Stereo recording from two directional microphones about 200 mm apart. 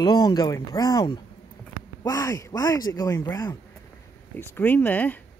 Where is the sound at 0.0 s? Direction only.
20° left (ahead or behind).